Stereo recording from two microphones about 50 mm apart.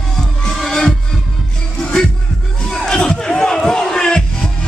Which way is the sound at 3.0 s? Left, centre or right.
Centre.